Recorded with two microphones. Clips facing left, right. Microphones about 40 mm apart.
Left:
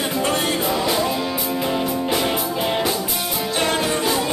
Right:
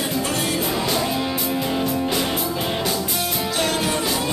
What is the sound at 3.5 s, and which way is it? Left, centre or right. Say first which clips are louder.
Music: left 2 dB; left.